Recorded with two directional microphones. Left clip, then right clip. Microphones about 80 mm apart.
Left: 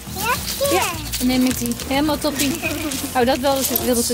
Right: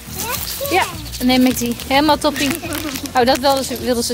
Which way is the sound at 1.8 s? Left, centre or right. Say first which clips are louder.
Right 6 dB; right.